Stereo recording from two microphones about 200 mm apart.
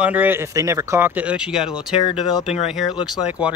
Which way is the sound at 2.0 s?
20° left (ahead or behind).